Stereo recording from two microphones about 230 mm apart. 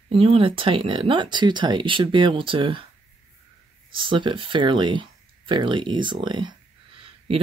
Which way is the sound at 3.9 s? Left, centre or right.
Right.